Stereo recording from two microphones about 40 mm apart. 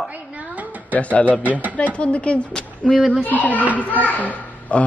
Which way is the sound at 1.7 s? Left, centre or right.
Left.